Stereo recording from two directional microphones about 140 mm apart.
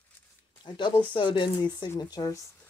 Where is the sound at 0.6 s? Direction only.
35° left (ahead or behind).